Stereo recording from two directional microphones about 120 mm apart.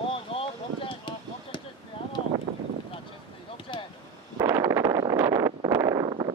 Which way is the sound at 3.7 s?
45° left (ahead or behind).